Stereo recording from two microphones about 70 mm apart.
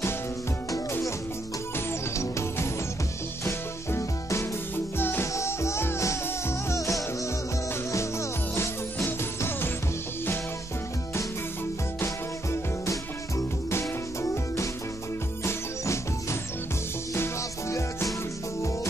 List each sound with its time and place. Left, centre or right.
2.1 s music: left
5.3 s music: left
13.7 s music: left